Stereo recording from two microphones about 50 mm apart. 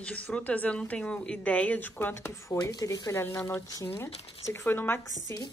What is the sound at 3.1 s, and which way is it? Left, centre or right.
Speech, left.